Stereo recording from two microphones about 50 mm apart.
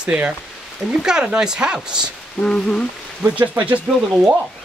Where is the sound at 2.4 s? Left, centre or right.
Left.